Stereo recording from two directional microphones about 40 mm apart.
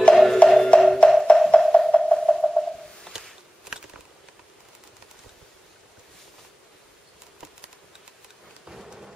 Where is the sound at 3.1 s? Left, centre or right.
Centre.